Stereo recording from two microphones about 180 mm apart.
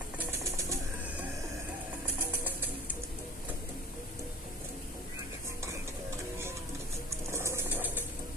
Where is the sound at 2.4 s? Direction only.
10° right (ahead or behind).